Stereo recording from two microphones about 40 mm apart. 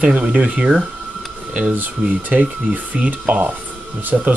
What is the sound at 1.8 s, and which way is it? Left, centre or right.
Speech, right.